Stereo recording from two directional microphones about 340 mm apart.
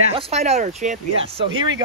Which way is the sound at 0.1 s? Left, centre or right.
Centre.